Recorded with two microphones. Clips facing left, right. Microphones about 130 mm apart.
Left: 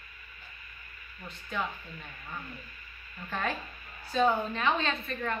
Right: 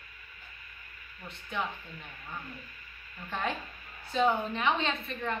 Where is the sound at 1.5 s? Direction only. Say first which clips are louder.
Even; 20° right (ahead or behind).